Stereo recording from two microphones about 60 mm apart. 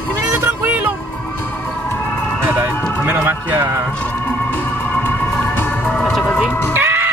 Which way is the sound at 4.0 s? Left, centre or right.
Left.